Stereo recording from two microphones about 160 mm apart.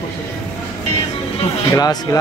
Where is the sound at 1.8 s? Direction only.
25° left (ahead or behind).